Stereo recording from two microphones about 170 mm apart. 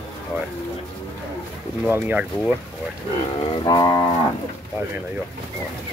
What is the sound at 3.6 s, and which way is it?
Cattle, 20° left (ahead or behind).